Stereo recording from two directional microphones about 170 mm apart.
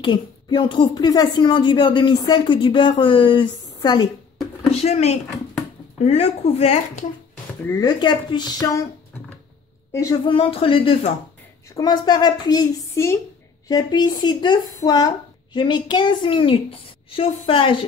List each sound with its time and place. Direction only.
0.0 s speech: 25° left (ahead or behind)
4.6 s a woman's voice: 40° left (ahead or behind)
7.6 s speech: 25° left (ahead or behind)
9.9 s speech: 20° left (ahead or behind)
10.3 s a woman's voice: 30° left (ahead or behind)